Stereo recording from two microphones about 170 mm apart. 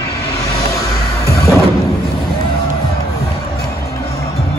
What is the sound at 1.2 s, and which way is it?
Music, 15° left (ahead or behind).